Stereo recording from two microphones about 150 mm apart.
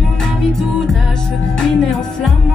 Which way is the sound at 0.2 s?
5° left (ahead or behind).